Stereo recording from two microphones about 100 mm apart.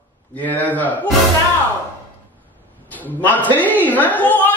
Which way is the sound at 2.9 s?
15° left (ahead or behind).